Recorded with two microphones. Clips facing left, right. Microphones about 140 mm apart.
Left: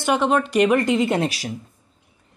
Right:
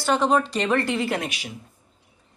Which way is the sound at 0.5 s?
15° left (ahead or behind).